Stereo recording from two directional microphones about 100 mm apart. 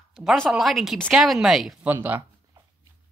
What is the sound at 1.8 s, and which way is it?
Speech, 15° right (ahead or behind).